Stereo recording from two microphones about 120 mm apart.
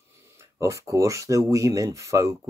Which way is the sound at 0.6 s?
25° right (ahead or behind).